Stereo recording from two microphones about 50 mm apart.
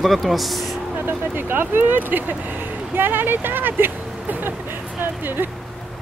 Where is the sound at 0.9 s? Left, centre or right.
Right.